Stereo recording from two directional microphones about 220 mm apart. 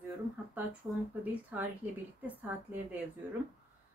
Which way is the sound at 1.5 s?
5° right (ahead or behind).